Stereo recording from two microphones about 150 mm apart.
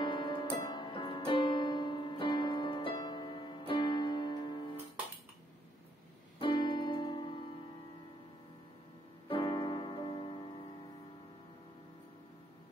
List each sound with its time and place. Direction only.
0.0 s piano: 30° left (ahead or behind)
6.4 s music: 35° left (ahead or behind)
9.3 s music: 35° left (ahead or behind)